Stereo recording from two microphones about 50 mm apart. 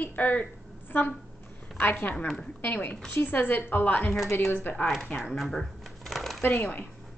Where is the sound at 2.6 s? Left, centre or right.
Left.